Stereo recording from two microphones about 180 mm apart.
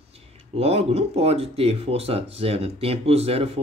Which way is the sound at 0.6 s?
35° right (ahead or behind).